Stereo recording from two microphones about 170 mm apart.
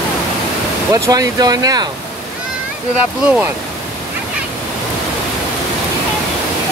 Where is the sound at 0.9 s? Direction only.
20° right (ahead or behind).